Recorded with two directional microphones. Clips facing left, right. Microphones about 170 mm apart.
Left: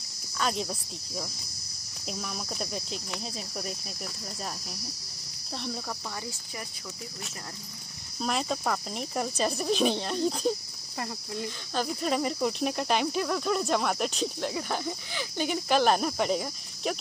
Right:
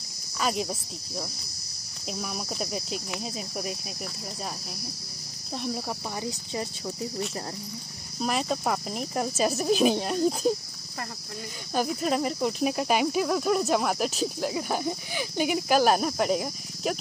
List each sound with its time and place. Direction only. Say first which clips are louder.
0.4 s speech: right 2 dB; 5° right (ahead or behind)
5.9 s speech: right 5 dB; 20° right (ahead or behind)
8.2 s cricket: right 2 dB; 5° right (ahead or behind)
11.7 s cricket: right 3 dB; 5° right (ahead or behind)